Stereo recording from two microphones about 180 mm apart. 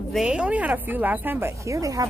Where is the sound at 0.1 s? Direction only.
5° right (ahead or behind).